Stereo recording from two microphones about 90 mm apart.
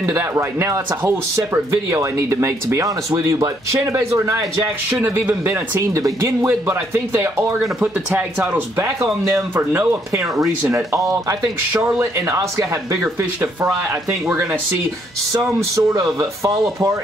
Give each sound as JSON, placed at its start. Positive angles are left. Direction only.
{"t": 0.0, "sound": "speech", "side_deg": -35}
{"t": 8.8, "sound": "speech", "side_deg": -35}
{"t": 14.2, "sound": "speech", "side_deg": -30}
{"t": 15.7, "sound": "speech", "side_deg": -40}